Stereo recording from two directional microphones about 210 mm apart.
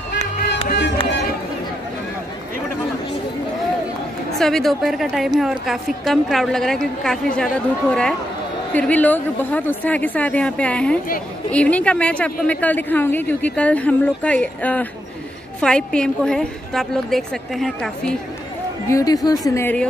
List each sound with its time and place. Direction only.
0.7 s music: 50° left (ahead or behind)
4.4 s a woman's voice: centre (ahead or behind)
18.9 s a woman's voice: 15° left (ahead or behind)